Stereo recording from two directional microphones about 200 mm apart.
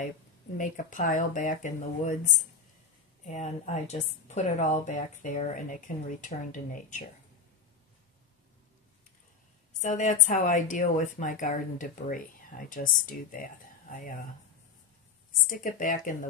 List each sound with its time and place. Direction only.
0.6 s speech: 40° left (ahead or behind)
9.8 s speech: 40° left (ahead or behind)
15.3 s speech: 45° left (ahead or behind)